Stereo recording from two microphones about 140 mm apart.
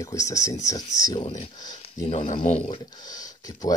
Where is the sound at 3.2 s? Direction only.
25° left (ahead or behind).